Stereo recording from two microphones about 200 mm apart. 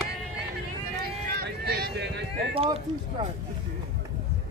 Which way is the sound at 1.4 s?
55° right (ahead or behind).